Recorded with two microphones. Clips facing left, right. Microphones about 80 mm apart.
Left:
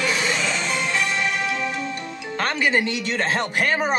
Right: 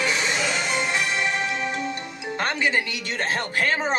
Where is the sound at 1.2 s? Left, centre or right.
Right.